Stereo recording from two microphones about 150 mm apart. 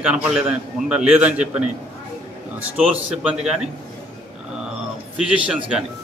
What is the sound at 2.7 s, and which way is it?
Speech, 5° right (ahead or behind).